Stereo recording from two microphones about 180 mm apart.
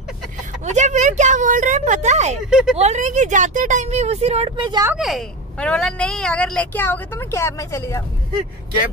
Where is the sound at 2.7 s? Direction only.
40° right (ahead or behind); by 4.9 s 25° right (ahead or behind).